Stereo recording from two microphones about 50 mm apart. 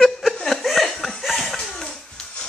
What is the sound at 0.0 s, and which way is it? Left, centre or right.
Laughter, centre.